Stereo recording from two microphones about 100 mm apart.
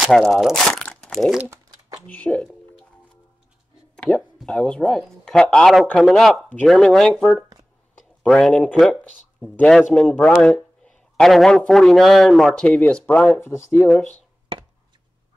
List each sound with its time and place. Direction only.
0.0 s speech: centre (ahead or behind)
0.7 s crumpling: 10° left (ahead or behind)
2.0 s a man's voice: 15° left (ahead or behind)
3.9 s a man's voice: 10° left (ahead or behind)
13.9 s a man's voice: 15° left (ahead or behind)